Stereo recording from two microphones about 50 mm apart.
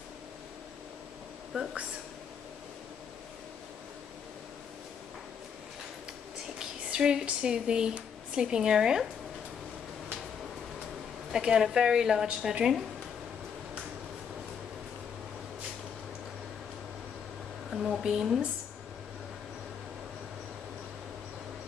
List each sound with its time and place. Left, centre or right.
1.5 s a woman's voice: centre
6.6 s speech: centre
11.3 s a woman's voice: centre
17.6 s a woman's voice: centre